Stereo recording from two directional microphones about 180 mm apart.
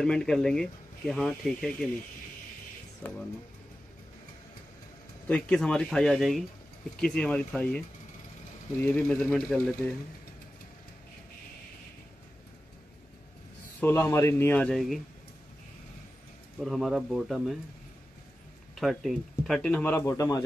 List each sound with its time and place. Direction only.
0.0 s speech: 5° left (ahead or behind)
3.0 s speech: 10° left (ahead or behind)
5.3 s speech: 5° left (ahead or behind)
8.8 s speech: 10° left (ahead or behind)
13.7 s speech: 10° left (ahead or behind)
16.6 s speech: centre (ahead or behind)
18.8 s speech: centre (ahead or behind); by 20.4 s 15° left (ahead or behind)